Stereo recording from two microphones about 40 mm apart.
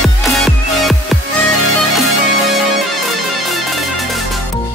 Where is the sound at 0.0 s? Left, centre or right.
Centre.